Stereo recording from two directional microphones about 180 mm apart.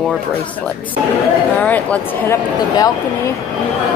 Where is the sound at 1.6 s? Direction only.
10° left (ahead or behind).